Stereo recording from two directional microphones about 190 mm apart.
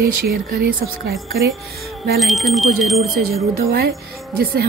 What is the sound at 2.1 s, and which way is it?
Speech, centre (ahead or behind).